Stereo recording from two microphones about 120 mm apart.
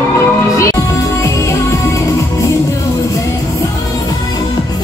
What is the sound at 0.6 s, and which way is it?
Music, 25° left (ahead or behind).